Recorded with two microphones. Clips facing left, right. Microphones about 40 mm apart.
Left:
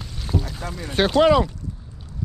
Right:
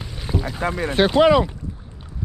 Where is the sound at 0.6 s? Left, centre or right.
Right.